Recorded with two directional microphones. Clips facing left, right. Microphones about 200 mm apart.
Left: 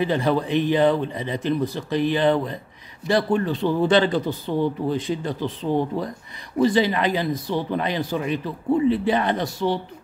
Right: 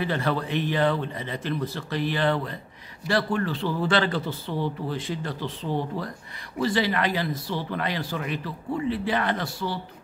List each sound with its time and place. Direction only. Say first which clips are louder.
0.0 s a man's voice: left 5 dB; 15° left (ahead or behind)
6.6 s speech: left 5 dB; 20° left (ahead or behind)